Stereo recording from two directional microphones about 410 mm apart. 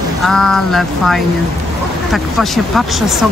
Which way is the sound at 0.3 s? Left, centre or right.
Centre.